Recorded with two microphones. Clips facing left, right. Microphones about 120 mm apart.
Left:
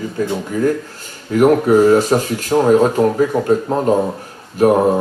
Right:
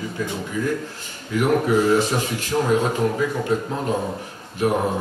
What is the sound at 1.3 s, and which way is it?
A man's voice, 45° left (ahead or behind).